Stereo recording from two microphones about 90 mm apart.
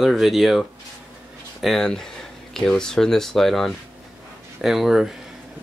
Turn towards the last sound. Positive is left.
turn(degrees=-5)  # may be behind; listen again after turning